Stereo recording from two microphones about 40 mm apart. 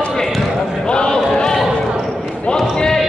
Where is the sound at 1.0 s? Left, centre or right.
Centre.